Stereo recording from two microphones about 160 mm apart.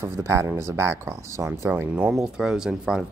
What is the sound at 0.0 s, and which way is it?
Speech, 15° right (ahead or behind).